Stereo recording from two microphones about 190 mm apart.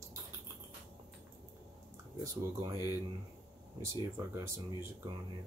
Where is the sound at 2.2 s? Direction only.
15° right (ahead or behind).